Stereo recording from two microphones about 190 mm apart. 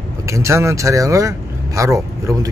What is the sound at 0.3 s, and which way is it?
Speech, 15° right (ahead or behind).